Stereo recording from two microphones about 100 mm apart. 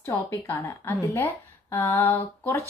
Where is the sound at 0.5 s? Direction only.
20° left (ahead or behind).